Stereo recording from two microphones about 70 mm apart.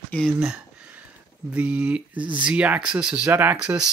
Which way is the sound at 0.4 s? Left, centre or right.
Centre.